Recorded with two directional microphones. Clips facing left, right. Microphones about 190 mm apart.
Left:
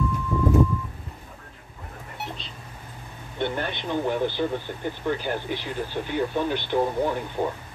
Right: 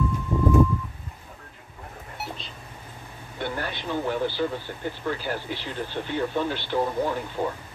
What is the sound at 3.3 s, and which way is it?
Speech, 25° left (ahead or behind).